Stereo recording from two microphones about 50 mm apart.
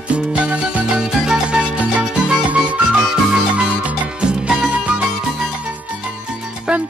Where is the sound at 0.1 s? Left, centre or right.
Right.